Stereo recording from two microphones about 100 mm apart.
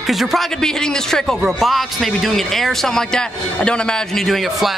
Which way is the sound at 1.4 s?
Centre (ahead or behind).